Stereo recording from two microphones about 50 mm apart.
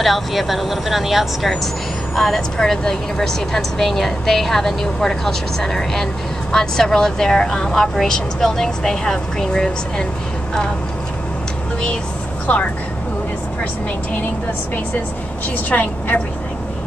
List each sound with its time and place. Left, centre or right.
0.0 s speech: centre
2.1 s a woman's voice: centre
12.5 s speech: left
15.7 s a woman's voice: left